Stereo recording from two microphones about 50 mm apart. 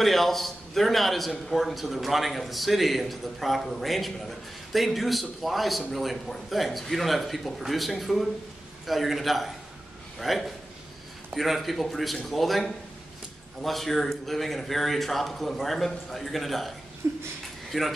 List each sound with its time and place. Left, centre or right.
0.0 s a man's voice: centre
17.0 s a sound: right
17.6 s speech: centre